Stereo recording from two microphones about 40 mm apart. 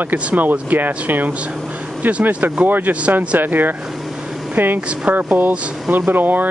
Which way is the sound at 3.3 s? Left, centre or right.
Right.